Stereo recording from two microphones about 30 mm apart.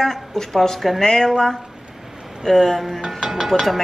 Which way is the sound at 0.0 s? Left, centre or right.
Centre.